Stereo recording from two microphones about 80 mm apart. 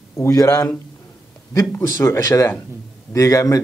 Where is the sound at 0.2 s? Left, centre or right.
Left.